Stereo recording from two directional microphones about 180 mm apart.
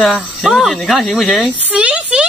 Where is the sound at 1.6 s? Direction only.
5° right (ahead or behind).